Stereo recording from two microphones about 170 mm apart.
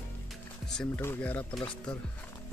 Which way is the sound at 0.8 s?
10° left (ahead or behind).